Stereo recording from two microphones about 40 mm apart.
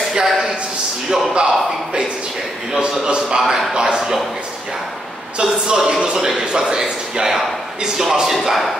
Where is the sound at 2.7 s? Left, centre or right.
Right.